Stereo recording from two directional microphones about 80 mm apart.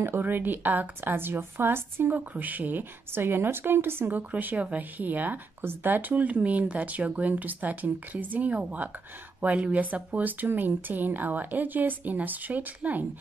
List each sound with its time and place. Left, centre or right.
0.0 s speech: right